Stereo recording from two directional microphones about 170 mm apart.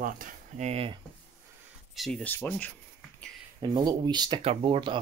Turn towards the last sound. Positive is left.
turn(degrees=-30)  # may be behind; listen again after turning